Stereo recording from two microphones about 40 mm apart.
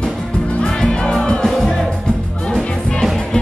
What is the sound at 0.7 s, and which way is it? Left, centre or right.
Music, centre.